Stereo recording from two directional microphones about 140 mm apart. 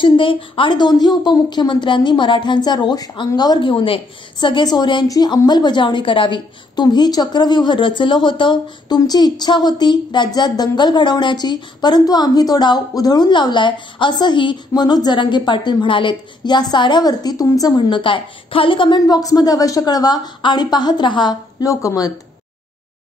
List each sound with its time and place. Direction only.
0.0 s a woman's voice: 40° left (ahead or behind)